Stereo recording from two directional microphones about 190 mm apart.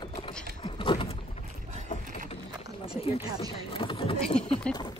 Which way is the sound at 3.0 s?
30° left (ahead or behind).